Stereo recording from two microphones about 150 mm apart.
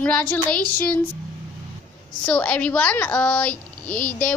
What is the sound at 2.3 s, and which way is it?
A woman's voice, 10° left (ahead or behind).